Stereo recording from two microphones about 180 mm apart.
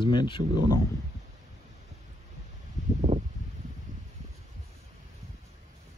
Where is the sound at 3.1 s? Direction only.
40° right (ahead or behind).